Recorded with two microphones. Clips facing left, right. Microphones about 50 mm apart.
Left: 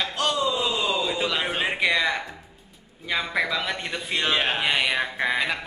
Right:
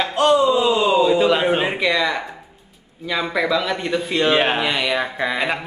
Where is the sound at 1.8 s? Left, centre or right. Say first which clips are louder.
Right 3 dB; centre.